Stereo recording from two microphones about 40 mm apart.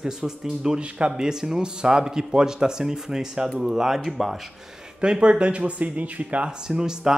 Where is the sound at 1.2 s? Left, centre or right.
Centre.